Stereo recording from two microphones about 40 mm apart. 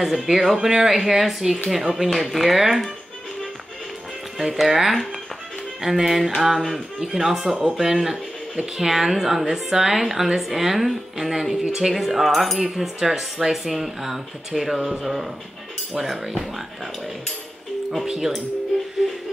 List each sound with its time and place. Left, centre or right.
0.0 s a woman's voice: centre
4.4 s a woman's voice: centre
18.1 s a woman's voice: centre